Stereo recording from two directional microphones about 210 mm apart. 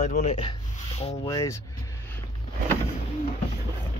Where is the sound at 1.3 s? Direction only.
15° left (ahead or behind).